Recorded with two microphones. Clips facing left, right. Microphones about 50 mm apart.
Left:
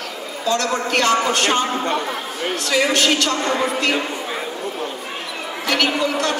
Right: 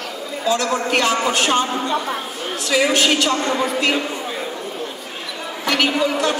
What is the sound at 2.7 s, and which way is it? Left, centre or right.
Speech, centre.